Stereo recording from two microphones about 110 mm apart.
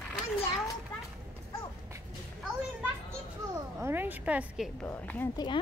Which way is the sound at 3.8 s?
20° right (ahead or behind).